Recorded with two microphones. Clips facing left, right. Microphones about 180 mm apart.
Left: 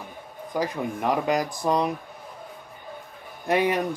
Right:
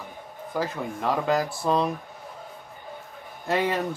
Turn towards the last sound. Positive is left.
turn(degrees=15)  # may be behind; listen again after turning